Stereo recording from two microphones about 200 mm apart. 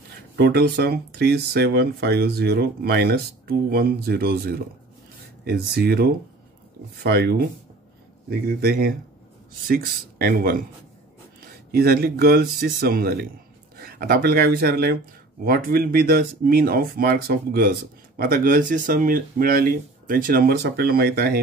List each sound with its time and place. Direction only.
0.4 s speech: 55° right (ahead or behind)
11.7 s speech: 50° right (ahead or behind)